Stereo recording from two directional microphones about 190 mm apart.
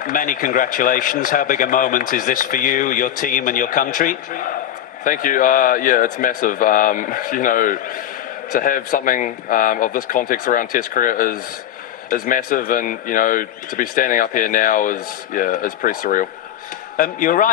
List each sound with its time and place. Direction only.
0.0 s speech: 45° left (ahead or behind)